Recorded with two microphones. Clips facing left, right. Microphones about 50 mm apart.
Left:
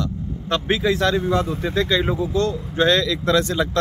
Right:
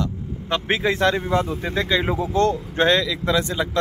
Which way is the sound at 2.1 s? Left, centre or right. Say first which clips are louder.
Right 2 dB; right.